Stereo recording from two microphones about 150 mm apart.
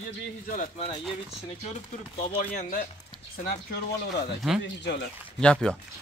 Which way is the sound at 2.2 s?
60° left (ahead or behind).